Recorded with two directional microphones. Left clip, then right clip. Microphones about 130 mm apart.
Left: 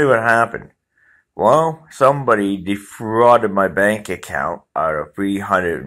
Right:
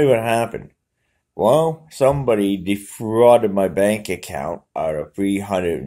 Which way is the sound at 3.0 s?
25° left (ahead or behind).